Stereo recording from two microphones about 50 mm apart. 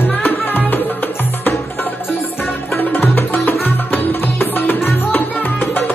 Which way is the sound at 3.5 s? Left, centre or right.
Left.